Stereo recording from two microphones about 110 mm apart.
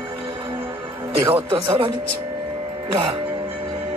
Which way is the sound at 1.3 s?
55° right (ahead or behind).